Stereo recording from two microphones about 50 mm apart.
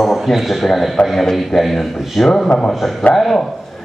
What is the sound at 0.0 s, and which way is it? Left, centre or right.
A man's voice, centre.